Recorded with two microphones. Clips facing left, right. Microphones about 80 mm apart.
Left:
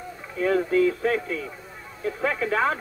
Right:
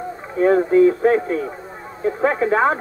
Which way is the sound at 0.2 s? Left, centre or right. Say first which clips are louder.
Right 7 dB; right.